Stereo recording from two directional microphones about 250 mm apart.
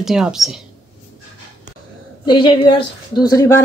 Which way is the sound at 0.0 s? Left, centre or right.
Centre.